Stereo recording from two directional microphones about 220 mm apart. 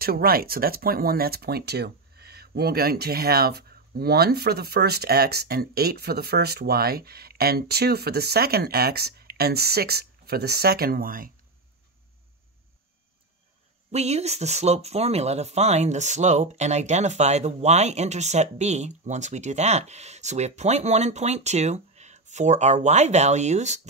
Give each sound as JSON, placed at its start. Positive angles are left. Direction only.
{"t": 0.0, "sound": "speech", "side_deg": -45}
{"t": 13.9, "sound": "speech", "side_deg": -30}